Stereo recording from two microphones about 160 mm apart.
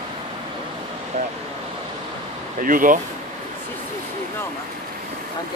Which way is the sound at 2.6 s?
60° right (ahead or behind).